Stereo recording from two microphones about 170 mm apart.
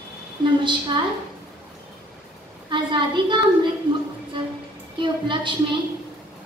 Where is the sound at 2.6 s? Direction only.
30° right (ahead or behind).